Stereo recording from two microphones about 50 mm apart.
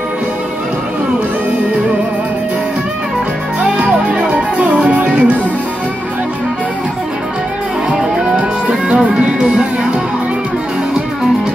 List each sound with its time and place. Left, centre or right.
3.6 s music: centre
7.9 s music: centre